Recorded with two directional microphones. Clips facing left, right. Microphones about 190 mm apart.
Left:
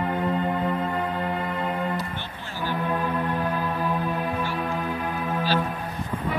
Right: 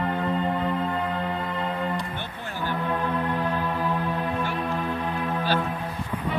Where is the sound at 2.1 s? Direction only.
55° right (ahead or behind).